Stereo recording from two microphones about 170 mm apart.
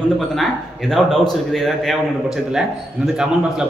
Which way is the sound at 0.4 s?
Centre (ahead or behind).